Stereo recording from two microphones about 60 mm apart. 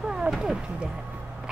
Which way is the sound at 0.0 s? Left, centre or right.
Centre.